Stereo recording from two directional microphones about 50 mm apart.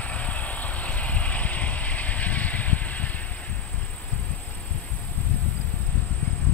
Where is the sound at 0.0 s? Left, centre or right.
Left.